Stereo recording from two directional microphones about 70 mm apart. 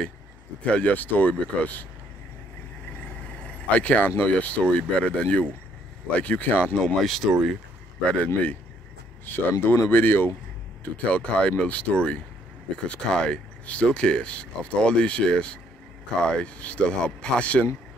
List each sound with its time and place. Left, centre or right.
0.7 s speech: centre
3.4 s speech: centre
7.0 s speech: centre
8.0 s speech: centre
9.2 s speech: left
11.1 s speech: centre